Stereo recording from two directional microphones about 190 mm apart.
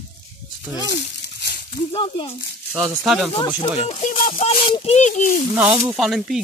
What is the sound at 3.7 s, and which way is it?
Speech, 35° left (ahead or behind).